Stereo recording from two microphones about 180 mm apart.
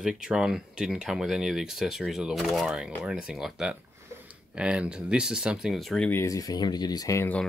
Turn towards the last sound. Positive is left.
turn(degrees=10)  # may be behind; listen again after turning